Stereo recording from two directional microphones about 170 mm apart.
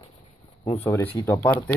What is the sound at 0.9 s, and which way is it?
Speech, 15° left (ahead or behind).